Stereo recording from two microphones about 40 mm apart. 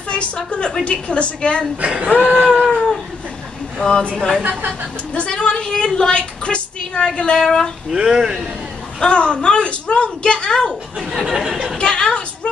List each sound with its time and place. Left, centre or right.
0.1 s a woman's voice: left
2.2 s speech: right
2.6 s cat: centre
3.7 s speech: centre
4.0 s a woman's voice: left
7.9 s speech: centre
9.0 s a woman's voice: left
11.1 s speech: centre
11.8 s a woman's voice: left